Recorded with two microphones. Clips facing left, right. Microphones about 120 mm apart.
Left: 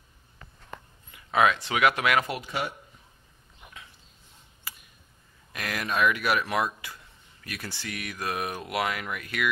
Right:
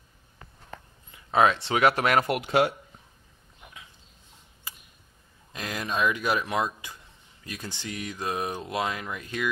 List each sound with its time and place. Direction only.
1.1 s a sound: 30° right (ahead or behind)
1.7 s speech: 35° right (ahead or behind)
2.2 s speech: 70° right (ahead or behind); by 2.7 s 90° right
5.5 s speech: 20° right (ahead or behind)